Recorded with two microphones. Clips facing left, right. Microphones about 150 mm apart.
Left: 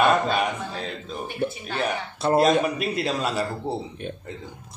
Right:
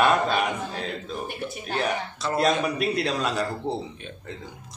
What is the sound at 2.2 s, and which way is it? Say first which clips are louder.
Speech: left 5 dB; 55° left (ahead or behind).